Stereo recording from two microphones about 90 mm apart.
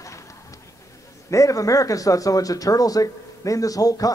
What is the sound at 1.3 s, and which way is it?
Speech, 40° left (ahead or behind).